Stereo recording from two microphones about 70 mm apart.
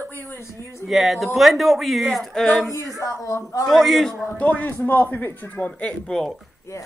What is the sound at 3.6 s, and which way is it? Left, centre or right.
Speech, centre.